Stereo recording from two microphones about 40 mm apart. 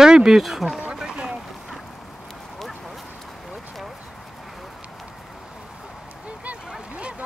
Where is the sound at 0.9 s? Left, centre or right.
Right.